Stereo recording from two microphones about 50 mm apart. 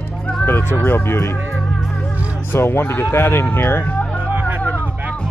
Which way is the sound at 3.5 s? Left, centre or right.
Left.